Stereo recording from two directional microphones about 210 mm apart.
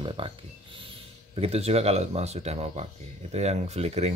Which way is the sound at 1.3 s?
30° right (ahead or behind).